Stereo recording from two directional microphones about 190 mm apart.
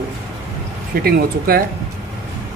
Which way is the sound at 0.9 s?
50° right (ahead or behind).